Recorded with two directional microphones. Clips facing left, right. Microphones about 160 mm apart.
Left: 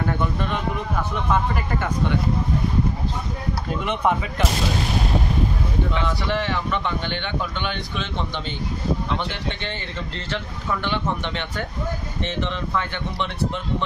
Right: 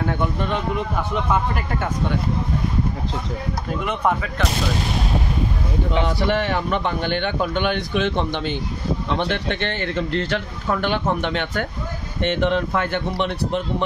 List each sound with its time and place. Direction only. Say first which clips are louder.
3.8 s speech: even; centre (ahead or behind)
6.0 s speech: right 3 dB; 50° right (ahead or behind)